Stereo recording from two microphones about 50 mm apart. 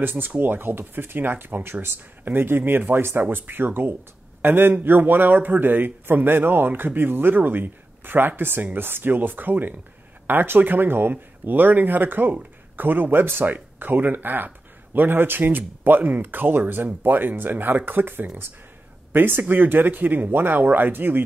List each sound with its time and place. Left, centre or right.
0.0 s a man's voice: right